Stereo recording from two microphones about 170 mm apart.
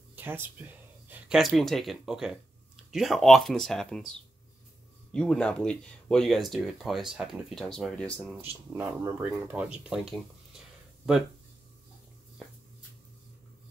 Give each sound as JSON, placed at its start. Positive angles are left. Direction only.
{"t": 0.1, "sound": "speech", "side_deg": -10}
{"t": 8.3, "sound": "speech", "side_deg": -15}